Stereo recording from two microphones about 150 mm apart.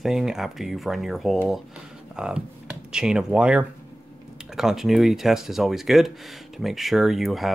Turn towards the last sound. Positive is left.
turn(degrees=0)  # may be behind; listen again after turning